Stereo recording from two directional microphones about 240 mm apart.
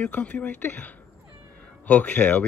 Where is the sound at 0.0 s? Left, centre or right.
Centre.